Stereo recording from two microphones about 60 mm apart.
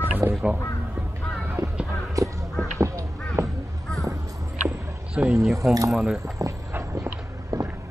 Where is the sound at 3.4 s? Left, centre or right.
Right.